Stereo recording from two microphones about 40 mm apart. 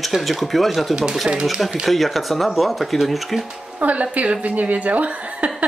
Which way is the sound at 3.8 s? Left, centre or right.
Right.